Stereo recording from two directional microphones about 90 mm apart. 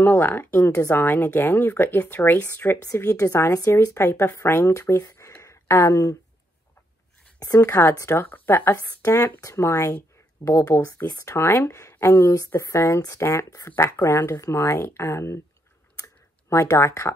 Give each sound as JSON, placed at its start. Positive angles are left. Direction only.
{"t": 0.0, "sound": "speech", "side_deg": 20}
{"t": 0.7, "sound": "speech", "side_deg": 35}
{"t": 0.9, "sound": "speech", "side_deg": 20}
{"t": 3.3, "sound": "speech", "side_deg": 35}
{"t": 5.4, "sound": "a sound", "side_deg": 35}
{"t": 7.4, "sound": "speech", "side_deg": 35}
{"t": 9.0, "sound": "speech", "side_deg": 35}
{"t": 13.7, "sound": "speech", "side_deg": 20}
{"t": 16.0, "sound": "typing", "side_deg": 25}
{"t": 16.6, "sound": "speech", "side_deg": 30}